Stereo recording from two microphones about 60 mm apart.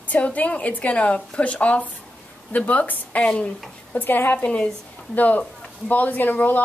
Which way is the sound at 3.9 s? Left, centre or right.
Left.